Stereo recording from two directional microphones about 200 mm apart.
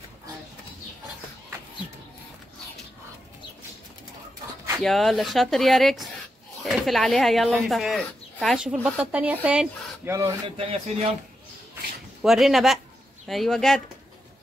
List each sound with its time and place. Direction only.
4.8 s speech: centre (ahead or behind)
10.6 s speech: 30° right (ahead or behind)
12.2 s speech: centre (ahead or behind)